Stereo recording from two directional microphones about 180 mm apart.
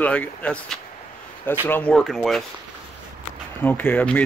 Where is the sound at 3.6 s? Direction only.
10° left (ahead or behind).